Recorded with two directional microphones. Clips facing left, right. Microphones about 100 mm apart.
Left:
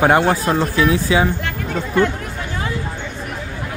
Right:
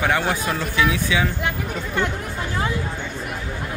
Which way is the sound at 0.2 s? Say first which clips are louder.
Left 7 dB; 30° left (ahead or behind).